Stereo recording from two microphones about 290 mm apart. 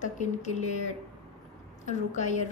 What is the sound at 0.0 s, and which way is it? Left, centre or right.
Speech, left.